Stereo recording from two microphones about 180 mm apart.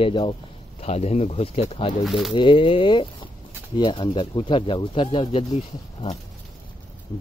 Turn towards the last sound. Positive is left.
turn(degrees=30)  # may be behind; listen again after turning